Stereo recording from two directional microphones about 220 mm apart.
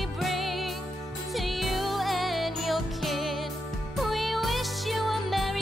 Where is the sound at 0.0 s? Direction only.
Centre (ahead or behind).